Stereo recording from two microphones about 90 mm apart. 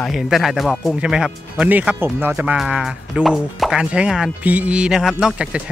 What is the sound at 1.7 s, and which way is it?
Speech, 20° right (ahead or behind).